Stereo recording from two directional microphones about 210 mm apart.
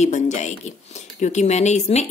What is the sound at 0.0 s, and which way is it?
A woman's voice, 35° left (ahead or behind).